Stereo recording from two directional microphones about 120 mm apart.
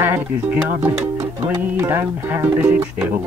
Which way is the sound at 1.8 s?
20° right (ahead or behind).